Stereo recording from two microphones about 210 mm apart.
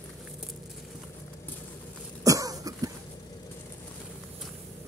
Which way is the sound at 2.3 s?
15° right (ahead or behind).